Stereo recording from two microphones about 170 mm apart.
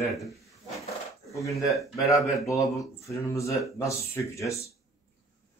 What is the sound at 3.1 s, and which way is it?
Speech, 20° left (ahead or behind).